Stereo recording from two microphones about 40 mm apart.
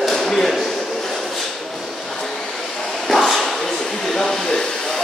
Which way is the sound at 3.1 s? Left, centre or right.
Centre.